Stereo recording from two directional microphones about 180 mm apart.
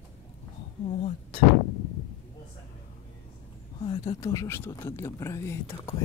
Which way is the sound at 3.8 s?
30° left (ahead or behind).